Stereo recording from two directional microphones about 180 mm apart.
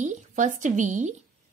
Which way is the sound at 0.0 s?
40° right (ahead or behind).